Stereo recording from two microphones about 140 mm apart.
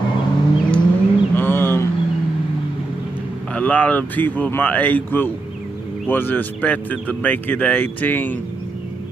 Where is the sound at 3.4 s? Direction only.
10° left (ahead or behind).